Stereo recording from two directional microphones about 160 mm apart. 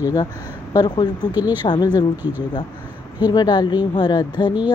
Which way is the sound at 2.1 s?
10° right (ahead or behind).